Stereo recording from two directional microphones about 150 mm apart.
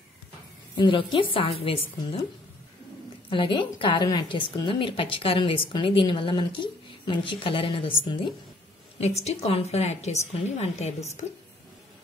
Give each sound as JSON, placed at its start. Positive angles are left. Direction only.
{"t": 0.7, "sound": "a woman's voice", "side_deg": 35}
{"t": 3.3, "sound": "a woman's voice", "side_deg": 35}
{"t": 8.9, "sound": "a woman's voice", "side_deg": 45}